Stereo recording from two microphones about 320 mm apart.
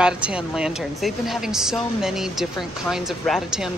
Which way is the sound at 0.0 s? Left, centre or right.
Centre.